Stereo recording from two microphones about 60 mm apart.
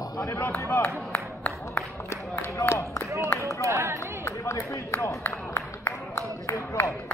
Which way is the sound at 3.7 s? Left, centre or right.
Right.